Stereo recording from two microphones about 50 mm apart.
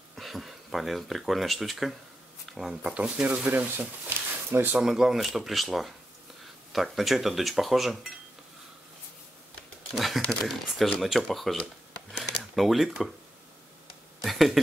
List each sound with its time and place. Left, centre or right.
0.1 s speech: centre
2.4 s a sound: centre
2.7 s speech: right
3.4 s speech: right
4.7 s speech: centre
9.9 s speech: centre
14.2 s speech: centre